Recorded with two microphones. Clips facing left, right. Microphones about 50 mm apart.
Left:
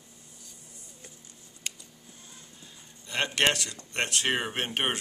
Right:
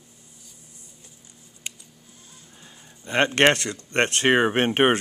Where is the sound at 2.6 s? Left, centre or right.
Right.